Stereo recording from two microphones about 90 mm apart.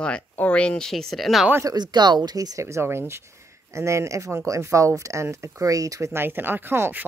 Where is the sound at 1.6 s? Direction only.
50° right (ahead or behind).